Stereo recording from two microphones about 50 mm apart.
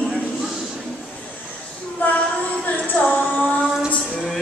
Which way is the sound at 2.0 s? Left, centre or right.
Left.